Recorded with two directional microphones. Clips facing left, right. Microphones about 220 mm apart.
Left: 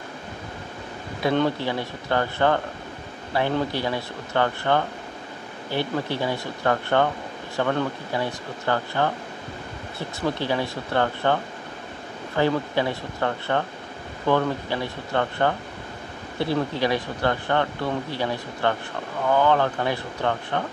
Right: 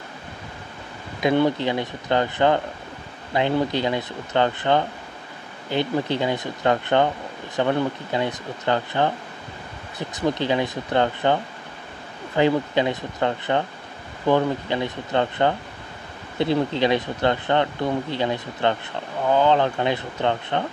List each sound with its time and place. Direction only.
1.2 s speech: 15° right (ahead or behind)
12.4 s speech: 20° right (ahead or behind)